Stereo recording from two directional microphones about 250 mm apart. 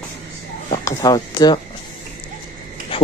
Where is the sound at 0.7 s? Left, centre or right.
Centre.